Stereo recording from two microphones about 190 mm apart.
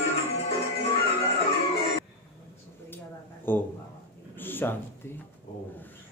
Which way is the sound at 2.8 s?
10° left (ahead or behind).